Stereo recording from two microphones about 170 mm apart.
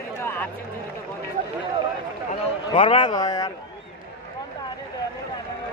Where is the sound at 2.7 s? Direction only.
30° left (ahead or behind).